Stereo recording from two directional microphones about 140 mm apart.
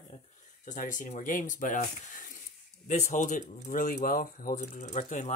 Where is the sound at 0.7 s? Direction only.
65° left (ahead or behind).